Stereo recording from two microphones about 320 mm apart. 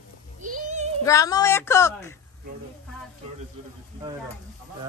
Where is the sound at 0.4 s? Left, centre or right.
Right.